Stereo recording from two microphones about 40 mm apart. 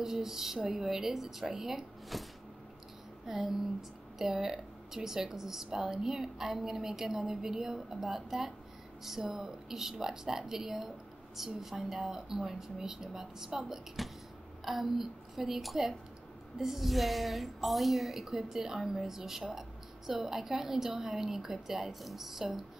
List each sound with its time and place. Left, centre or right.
0.0 s a woman's voice: centre
3.3 s a woman's voice: centre
14.0 s a woman's voice: centre